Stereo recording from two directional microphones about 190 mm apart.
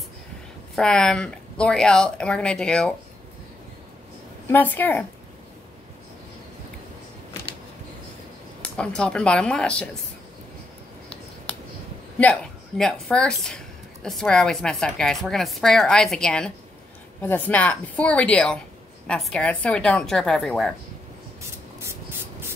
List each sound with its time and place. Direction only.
0.7 s a woman's voice: 5° left (ahead or behind)
4.5 s a woman's voice: 10° left (ahead or behind)
8.6 s a woman's voice: 5° left (ahead or behind)
12.2 s a woman's voice: 5° left (ahead or behind)
21.4 s spray: 15° right (ahead or behind)